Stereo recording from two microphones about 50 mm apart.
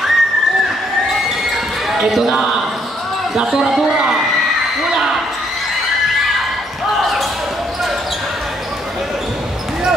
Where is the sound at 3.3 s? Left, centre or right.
Centre.